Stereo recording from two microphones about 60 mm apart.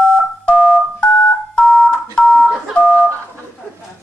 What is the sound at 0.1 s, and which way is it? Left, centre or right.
Telephone dialing, centre.